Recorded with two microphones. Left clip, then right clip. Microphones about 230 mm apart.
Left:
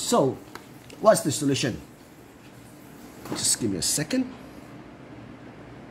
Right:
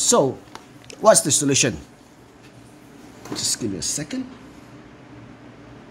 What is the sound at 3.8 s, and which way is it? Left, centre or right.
Speech, centre.